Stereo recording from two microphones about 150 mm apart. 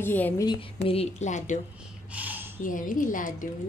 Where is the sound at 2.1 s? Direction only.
10° right (ahead or behind).